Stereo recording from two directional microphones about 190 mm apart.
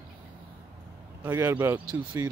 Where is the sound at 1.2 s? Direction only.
10° right (ahead or behind).